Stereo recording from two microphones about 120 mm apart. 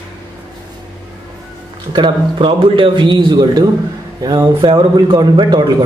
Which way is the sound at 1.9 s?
40° right (ahead or behind).